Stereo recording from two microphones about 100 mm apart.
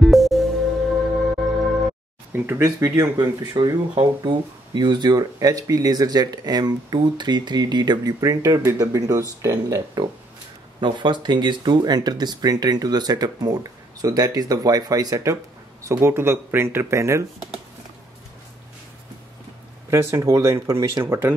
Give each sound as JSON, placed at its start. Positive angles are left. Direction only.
{"t": 0.0, "sound": "music", "side_deg": 0}
{"t": 2.3, "sound": "speech", "side_deg": -25}
{"t": 3.9, "sound": "speech", "side_deg": -55}
{"t": 10.8, "sound": "speech", "side_deg": -50}
{"t": 15.9, "sound": "speech", "side_deg": -25}
{"t": 19.9, "sound": "speech", "side_deg": -30}